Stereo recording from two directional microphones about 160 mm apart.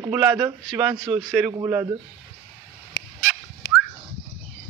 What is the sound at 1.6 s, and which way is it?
Speech, 15° right (ahead or behind).